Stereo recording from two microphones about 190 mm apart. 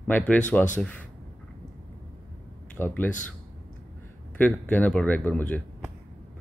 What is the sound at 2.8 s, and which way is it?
Speech, 10° left (ahead or behind).